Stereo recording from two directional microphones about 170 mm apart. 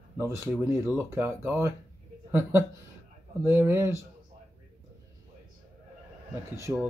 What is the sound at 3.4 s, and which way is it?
Speech, 15° right (ahead or behind).